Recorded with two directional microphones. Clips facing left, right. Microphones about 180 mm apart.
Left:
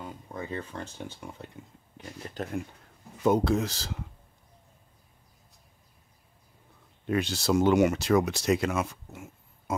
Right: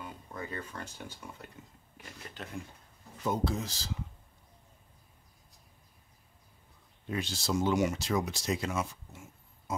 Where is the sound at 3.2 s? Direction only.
70° left (ahead or behind).